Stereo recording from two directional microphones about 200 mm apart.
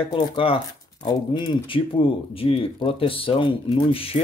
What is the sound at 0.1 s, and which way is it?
Speech, 25° left (ahead or behind).